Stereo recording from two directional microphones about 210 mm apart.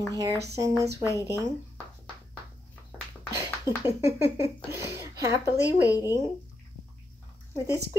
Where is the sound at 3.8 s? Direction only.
10° right (ahead or behind).